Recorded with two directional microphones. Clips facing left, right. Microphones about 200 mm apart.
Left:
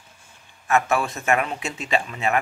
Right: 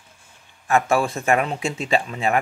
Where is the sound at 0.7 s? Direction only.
30° right (ahead or behind).